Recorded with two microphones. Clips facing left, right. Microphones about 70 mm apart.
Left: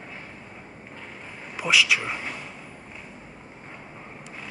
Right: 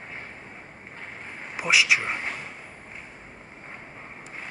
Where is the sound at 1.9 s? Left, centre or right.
Right.